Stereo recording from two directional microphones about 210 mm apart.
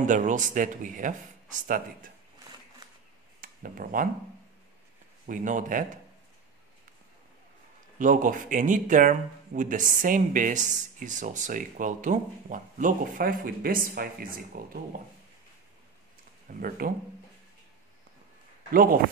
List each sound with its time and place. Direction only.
0.0 s speech: 35° right (ahead or behind)
3.3 s a sound: 40° right (ahead or behind)
5.2 s speech: 35° right (ahead or behind)
8.0 s speech: 40° right (ahead or behind)
16.5 s speech: 40° right (ahead or behind)
18.7 s speech: 40° right (ahead or behind)